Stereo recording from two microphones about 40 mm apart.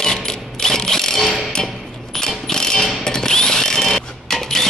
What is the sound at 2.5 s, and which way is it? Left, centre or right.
Music, centre.